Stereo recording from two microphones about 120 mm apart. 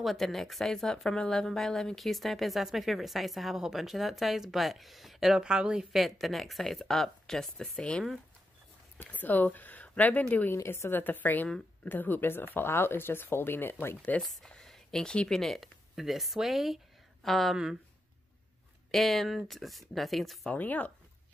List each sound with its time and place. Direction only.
0.0 s a woman's voice: centre (ahead or behind)
8.9 s speech: 15° left (ahead or behind)
11.4 s speech: 5° left (ahead or behind)
11.9 s speech: 15° left (ahead or behind)
14.2 s speech: 5° left (ahead or behind)
18.9 s a woman's voice: centre (ahead or behind)
20.4 s speech: 15° left (ahead or behind)